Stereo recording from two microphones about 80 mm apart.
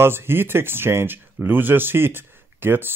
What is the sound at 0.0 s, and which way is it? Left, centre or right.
Speech, right.